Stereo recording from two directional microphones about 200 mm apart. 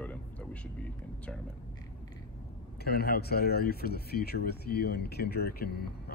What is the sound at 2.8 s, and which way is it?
Speech, 50° left (ahead or behind).